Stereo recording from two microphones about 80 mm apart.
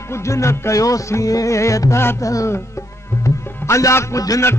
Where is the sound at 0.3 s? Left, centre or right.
Left.